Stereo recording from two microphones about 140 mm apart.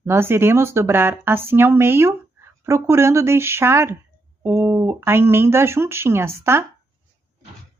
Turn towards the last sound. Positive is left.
turn(degrees=-20)  # may be behind; listen again after turning